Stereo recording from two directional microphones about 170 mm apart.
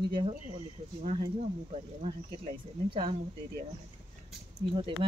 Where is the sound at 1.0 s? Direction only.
30° right (ahead or behind).